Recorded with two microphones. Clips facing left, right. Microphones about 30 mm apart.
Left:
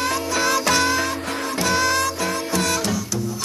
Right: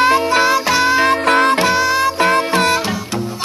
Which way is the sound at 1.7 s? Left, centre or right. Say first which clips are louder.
Right 5 dB; centre.